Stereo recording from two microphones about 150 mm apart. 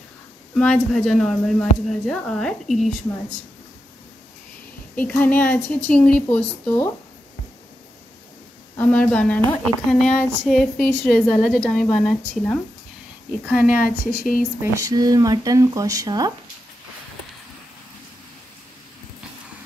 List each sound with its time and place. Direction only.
0.7 s a woman's voice: centre (ahead or behind)
4.9 s a woman's voice: 10° left (ahead or behind)
8.7 s a woman's voice: 10° left (ahead or behind)
13.5 s a woman's voice: 10° right (ahead or behind)
13.8 s a woman's voice: 70° left (ahead or behind)
14.6 s speech: 25° right (ahead or behind)